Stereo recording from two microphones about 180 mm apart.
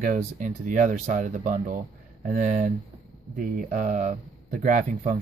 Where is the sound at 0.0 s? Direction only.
45° right (ahead or behind).